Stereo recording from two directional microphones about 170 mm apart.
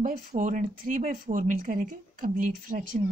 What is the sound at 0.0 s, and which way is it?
Speech, 50° right (ahead or behind).